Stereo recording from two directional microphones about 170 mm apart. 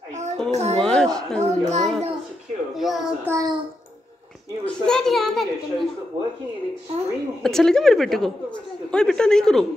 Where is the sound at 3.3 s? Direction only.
20° right (ahead or behind).